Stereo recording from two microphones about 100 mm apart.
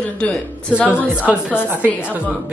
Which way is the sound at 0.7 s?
15° right (ahead or behind).